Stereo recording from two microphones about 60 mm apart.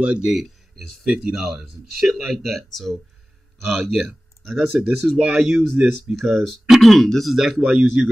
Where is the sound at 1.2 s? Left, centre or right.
Centre.